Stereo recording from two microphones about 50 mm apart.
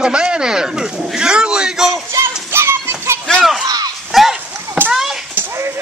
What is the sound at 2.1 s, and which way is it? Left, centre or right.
Children playing, right.